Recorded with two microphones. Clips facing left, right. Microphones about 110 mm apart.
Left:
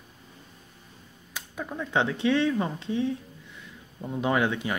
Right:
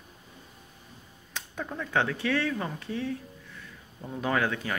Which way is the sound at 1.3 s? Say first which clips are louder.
Left 1 dB; 5° left (ahead or behind).